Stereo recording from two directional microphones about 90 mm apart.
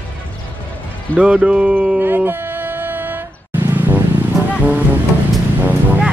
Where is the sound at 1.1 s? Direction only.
10° right (ahead or behind).